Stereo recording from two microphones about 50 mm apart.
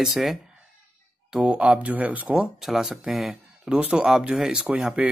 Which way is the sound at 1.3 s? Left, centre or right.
Right.